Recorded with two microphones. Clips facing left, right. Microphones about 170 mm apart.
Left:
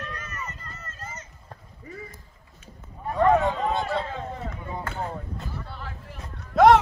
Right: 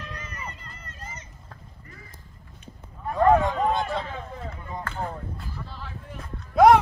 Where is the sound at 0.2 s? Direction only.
15° right (ahead or behind).